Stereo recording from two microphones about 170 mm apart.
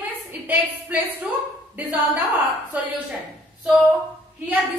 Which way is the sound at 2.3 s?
10° right (ahead or behind).